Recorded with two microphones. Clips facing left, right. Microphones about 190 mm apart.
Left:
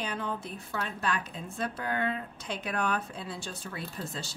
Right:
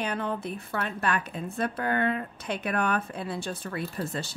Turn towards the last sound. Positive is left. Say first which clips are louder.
# right 6 dB
turn(degrees=-60)  # may be behind; listen again after turning